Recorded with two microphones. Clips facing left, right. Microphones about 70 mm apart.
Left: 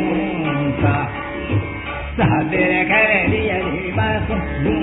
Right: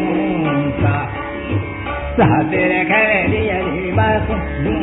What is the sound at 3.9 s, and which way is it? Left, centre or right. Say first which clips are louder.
Music: right 6 dB; right.